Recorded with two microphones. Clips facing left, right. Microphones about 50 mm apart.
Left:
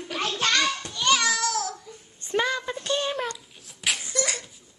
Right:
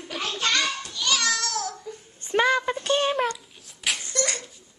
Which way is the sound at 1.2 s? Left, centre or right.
Centre.